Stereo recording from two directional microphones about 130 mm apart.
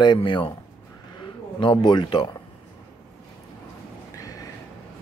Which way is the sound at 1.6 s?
35° left (ahead or behind).